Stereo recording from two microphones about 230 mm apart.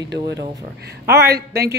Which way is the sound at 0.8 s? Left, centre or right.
Right.